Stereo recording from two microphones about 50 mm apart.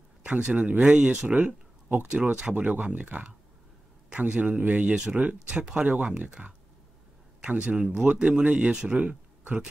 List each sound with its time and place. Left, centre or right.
0.2 s speech: right
7.4 s speech: right